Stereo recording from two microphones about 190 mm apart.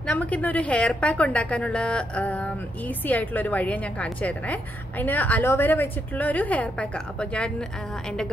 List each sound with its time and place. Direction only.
0.0 s a woman's voice: 5° left (ahead or behind)